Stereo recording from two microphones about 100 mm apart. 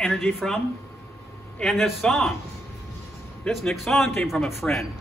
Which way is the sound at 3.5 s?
Centre (ahead or behind).